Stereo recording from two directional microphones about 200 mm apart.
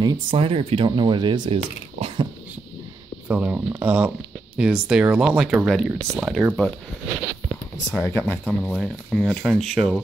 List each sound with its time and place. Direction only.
0.0 s speech: 25° right (ahead or behind)
3.3 s speech: 10° right (ahead or behind)
8.0 s speech: 10° left (ahead or behind)